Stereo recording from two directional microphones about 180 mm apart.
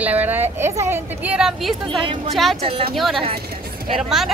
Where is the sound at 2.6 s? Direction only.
30° right (ahead or behind).